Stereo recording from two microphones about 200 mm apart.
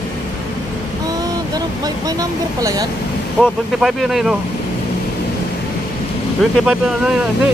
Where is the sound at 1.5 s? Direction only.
20° right (ahead or behind).